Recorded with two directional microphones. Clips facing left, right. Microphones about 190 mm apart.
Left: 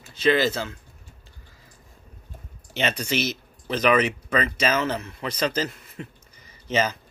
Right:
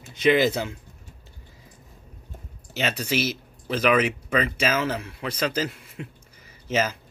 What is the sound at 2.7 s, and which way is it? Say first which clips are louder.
Speech: even; 5° right (ahead or behind).